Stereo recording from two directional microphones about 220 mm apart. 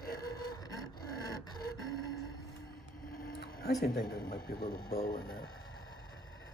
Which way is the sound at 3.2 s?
45° left (ahead or behind).